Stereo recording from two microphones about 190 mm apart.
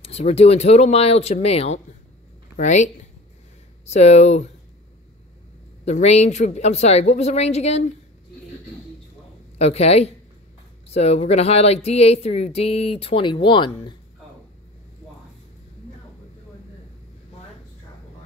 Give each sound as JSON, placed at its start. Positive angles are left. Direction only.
{"t": 0.0, "sound": "speech", "side_deg": 35}
{"t": 5.9, "sound": "speech", "side_deg": 35}
{"t": 9.6, "sound": "speech", "side_deg": 35}